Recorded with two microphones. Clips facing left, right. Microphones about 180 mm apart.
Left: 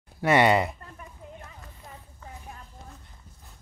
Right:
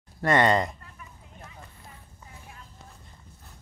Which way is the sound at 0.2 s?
10° left (ahead or behind).